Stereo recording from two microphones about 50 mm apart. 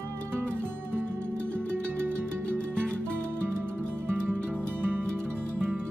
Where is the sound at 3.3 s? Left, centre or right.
Right.